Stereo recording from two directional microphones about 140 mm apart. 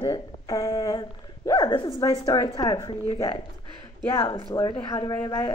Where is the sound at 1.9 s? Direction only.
25° left (ahead or behind).